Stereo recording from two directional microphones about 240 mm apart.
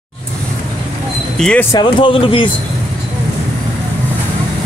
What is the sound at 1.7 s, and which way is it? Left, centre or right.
Speech, left.